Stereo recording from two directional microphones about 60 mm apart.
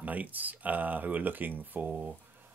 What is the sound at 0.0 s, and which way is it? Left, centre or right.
Speech, right.